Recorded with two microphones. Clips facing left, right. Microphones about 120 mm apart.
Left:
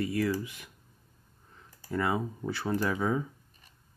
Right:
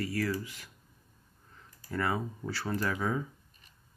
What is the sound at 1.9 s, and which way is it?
Speech, 15° left (ahead or behind).